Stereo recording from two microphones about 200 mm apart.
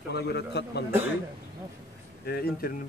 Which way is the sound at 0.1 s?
55° left (ahead or behind).